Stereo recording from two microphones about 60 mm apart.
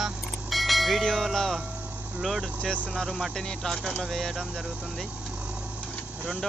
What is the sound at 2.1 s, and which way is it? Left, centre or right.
Speech, centre.